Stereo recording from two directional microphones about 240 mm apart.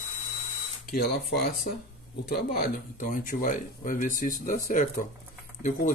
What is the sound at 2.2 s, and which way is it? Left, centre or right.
Speech, left.